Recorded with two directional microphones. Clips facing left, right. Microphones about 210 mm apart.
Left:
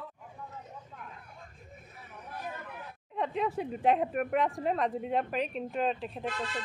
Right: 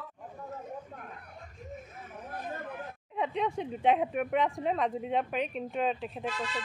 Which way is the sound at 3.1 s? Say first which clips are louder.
Even; centre (ahead or behind).